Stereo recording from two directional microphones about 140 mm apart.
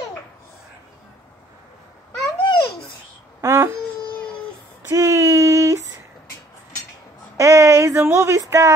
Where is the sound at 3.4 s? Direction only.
20° right (ahead or behind).